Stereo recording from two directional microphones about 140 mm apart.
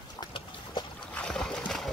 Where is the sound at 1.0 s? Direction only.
5° left (ahead or behind).